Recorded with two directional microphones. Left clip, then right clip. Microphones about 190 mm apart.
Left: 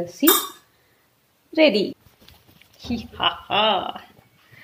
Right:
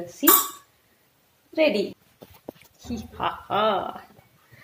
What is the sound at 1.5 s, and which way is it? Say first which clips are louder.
Speech: left 4 dB; 45° left (ahead or behind).